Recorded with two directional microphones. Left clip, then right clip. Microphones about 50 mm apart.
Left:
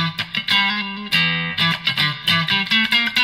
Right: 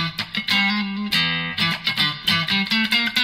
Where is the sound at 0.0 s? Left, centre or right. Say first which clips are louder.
Left 2 dB; left.